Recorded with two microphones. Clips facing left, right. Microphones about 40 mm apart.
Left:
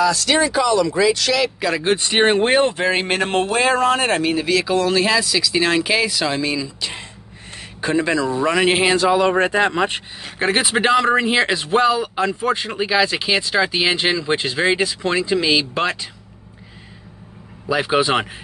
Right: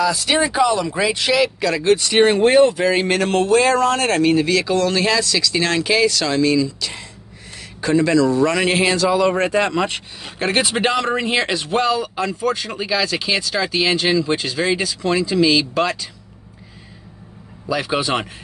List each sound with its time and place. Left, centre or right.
0.0 s speech: centre
1.8 s speech: left
17.6 s speech: left